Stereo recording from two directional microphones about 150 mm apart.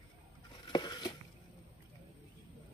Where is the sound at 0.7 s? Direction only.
30° left (ahead or behind).